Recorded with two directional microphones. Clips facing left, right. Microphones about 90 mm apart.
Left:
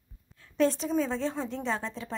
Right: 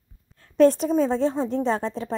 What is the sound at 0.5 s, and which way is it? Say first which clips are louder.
Speech: right 9 dB; 50° right (ahead or behind).